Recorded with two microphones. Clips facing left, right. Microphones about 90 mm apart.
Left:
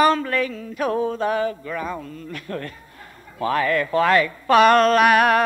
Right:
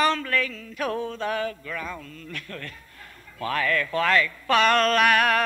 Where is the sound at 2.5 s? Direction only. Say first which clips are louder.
Left 8 dB; 20° left (ahead or behind).